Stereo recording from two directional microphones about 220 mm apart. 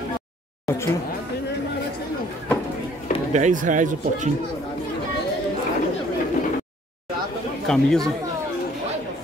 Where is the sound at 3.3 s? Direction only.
35° right (ahead or behind).